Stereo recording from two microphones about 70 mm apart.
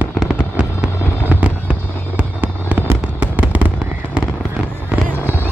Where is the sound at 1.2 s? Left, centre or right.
Right.